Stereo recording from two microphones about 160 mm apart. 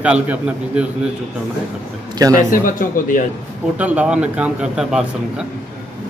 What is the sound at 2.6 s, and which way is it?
Speech, 60° left (ahead or behind).